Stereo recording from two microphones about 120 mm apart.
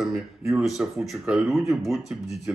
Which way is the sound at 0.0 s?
Centre (ahead or behind).